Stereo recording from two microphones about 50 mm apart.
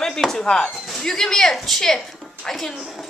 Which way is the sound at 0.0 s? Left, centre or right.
Centre.